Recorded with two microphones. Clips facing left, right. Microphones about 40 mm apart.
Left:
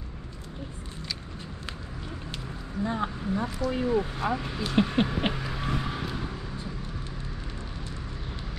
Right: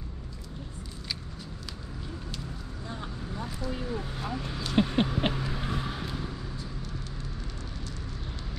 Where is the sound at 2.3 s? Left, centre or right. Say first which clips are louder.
Left 5 dB; left.